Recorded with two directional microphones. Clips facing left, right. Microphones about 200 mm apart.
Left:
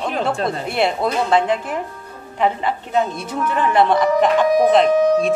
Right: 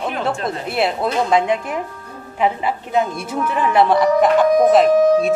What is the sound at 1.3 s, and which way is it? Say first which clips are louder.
A woman's voice: even; 10° right (ahead or behind).